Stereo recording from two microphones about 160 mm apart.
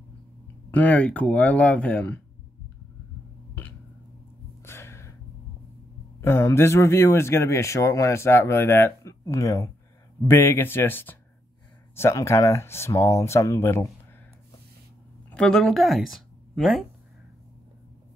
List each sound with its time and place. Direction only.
0.7 s speech: 10° left (ahead or behind)
4.6 s a sound: 15° left (ahead or behind)
6.2 s speech: 15° left (ahead or behind)
15.3 s speech: 5° left (ahead or behind)